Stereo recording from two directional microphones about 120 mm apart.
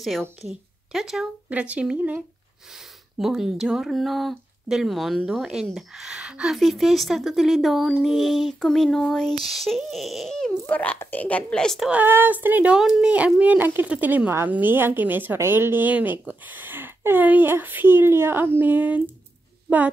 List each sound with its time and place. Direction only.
0.4 s a woman's voice: centre (ahead or behind)
10.7 s a woman's voice: 15° left (ahead or behind)
11.9 s a woman's voice: 15° right (ahead or behind)